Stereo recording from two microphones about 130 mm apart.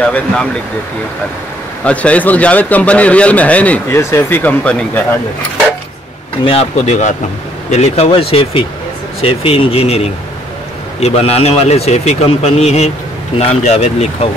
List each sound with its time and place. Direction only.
0.0 s a man's voice: 10° left (ahead or behind)
1.9 s a man's voice: 10° left (ahead or behind)
6.4 s a man's voice: 50° left (ahead or behind)